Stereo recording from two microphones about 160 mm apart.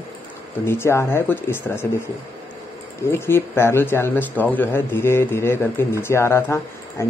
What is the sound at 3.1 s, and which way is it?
Speech, 15° left (ahead or behind).